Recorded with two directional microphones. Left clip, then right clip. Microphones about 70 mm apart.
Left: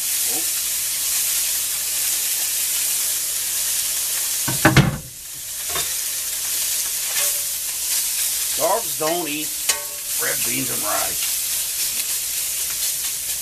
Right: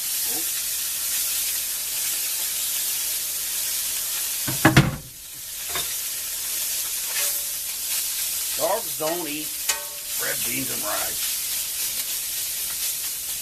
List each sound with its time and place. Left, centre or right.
4.6 s stir: right
8.5 s frying: centre